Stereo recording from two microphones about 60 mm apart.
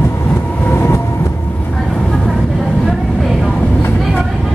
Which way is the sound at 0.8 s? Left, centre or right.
Left.